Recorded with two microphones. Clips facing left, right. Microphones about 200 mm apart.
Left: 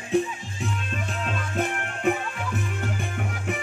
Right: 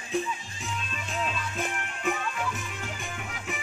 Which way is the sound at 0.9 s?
55° left (ahead or behind).